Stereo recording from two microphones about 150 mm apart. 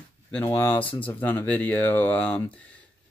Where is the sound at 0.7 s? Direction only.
35° left (ahead or behind).